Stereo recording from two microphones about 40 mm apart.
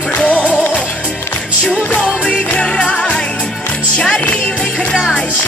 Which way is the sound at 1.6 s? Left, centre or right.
Left.